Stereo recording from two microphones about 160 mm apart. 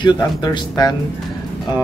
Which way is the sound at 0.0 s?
25° left (ahead or behind).